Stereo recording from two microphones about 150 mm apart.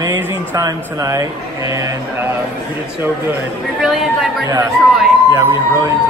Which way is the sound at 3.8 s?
Centre (ahead or behind).